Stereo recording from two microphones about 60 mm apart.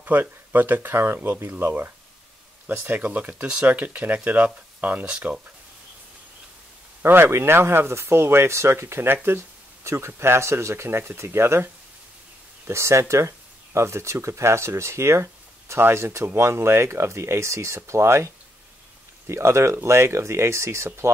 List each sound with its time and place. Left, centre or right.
0.0 s speech: right
7.0 s speech: right